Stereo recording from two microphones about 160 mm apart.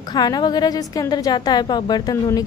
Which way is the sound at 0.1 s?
25° left (ahead or behind).